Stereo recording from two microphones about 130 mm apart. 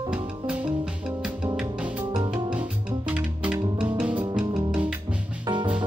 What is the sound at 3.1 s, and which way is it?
Music, 10° right (ahead or behind).